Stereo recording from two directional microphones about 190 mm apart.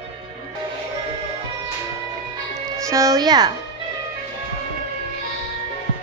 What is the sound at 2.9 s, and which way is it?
Speech, 15° right (ahead or behind).